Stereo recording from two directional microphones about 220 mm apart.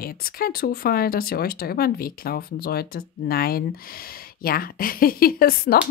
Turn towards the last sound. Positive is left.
turn(degrees=45)  # may be behind; listen again after turning